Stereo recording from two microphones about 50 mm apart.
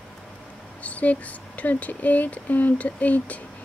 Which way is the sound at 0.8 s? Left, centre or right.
Left.